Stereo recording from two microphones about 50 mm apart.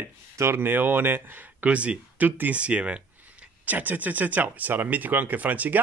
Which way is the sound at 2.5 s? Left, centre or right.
Right.